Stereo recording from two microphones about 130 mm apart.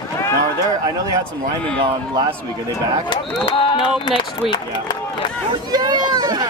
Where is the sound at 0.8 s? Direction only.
30° right (ahead or behind).